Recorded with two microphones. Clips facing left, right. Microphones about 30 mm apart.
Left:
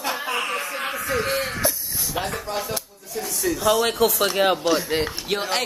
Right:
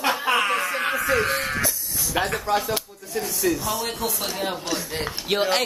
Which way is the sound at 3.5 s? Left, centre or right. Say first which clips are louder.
Left 8 dB; left.